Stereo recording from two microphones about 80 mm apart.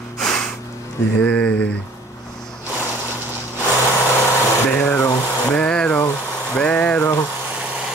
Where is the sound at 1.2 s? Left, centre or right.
Centre.